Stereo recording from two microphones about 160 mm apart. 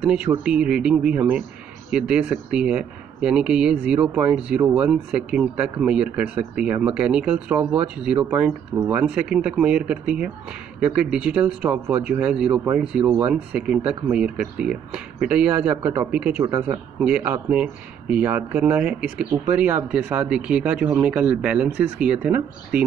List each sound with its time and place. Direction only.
0.0 s speech: 10° right (ahead or behind)
13.0 s speech: 20° right (ahead or behind)
13.3 s speech: 5° right (ahead or behind)